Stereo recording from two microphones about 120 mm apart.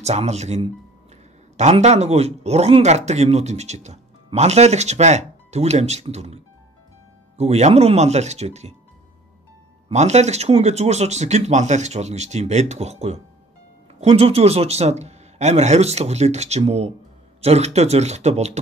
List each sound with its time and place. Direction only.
0.0 s speech: 65° right (ahead or behind)
9.9 s speech: 70° right (ahead or behind)